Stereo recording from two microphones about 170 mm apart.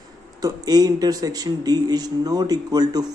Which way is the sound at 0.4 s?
20° right (ahead or behind).